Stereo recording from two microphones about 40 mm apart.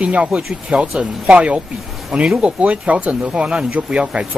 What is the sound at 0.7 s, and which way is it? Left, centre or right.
Speech, right.